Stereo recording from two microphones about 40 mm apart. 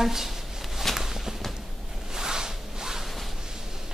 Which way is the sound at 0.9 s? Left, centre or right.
Centre.